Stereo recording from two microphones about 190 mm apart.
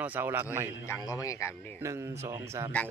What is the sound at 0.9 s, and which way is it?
Speech, 15° left (ahead or behind).